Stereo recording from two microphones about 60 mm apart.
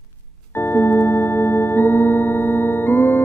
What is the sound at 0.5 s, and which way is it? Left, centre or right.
Singing bowl, left.